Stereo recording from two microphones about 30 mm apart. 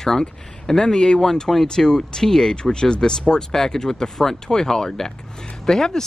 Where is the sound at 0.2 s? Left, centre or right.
Centre.